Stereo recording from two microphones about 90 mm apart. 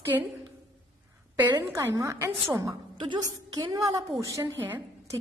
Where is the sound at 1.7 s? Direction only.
35° right (ahead or behind).